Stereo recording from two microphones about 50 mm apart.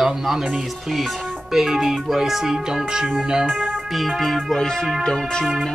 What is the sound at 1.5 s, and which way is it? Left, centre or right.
Speech, centre.